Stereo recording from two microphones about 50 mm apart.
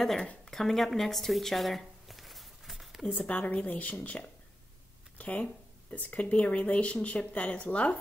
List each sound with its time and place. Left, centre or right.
0.0 s a woman's voice: centre
0.5 s a sound: centre
3.1 s speech: left